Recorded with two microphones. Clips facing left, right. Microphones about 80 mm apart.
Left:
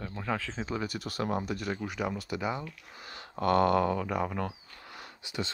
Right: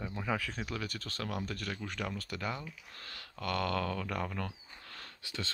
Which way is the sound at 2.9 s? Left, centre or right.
Centre.